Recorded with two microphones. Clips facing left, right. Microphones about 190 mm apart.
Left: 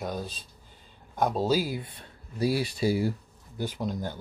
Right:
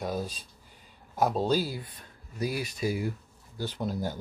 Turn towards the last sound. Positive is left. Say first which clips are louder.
# even
turn(degrees=-5)  # may be behind; listen again after turning